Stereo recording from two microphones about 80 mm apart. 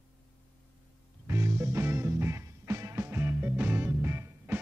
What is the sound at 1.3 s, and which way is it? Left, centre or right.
Music, right.